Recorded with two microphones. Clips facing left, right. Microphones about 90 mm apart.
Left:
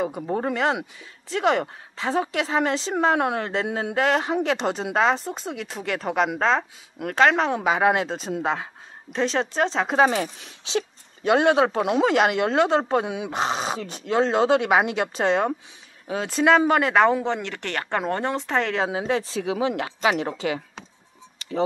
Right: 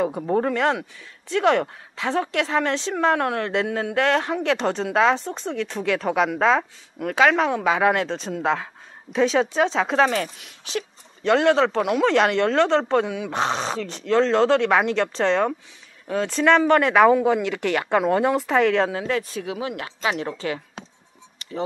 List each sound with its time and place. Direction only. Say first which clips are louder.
0.0 s speech: right 4 dB; 5° left (ahead or behind)
3.2 s speech: even; 15° left (ahead or behind)
3.9 s speech: even; 5° left (ahead or behind)
10.4 s speech: left 3 dB; 25° left (ahead or behind)
11.2 s speech: right 1 dB; 15° left (ahead or behind)
11.8 s speech: even; 25° left (ahead or behind)
12.1 s speech: right 1 dB; 5° left (ahead or behind)
13.0 s speech: right 1 dB; 20° left (ahead or behind)
13.3 s speech: right 1 dB; centre (ahead or behind)
18.9 s speech: even; 20° left (ahead or behind)